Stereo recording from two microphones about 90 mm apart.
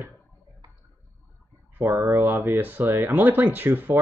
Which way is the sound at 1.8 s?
25° right (ahead or behind).